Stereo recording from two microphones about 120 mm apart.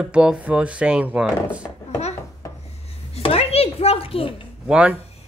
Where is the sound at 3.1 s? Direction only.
55° left (ahead or behind).